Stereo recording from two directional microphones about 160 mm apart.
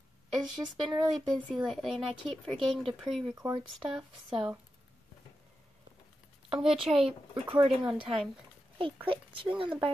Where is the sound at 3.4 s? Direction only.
25° right (ahead or behind).